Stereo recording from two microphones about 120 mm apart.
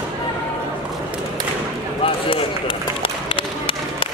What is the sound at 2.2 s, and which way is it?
Run, 45° left (ahead or behind).